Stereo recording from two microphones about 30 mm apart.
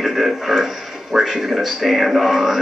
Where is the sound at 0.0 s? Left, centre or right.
Centre.